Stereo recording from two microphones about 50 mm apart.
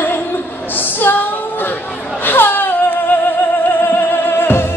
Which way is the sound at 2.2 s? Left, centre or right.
Left.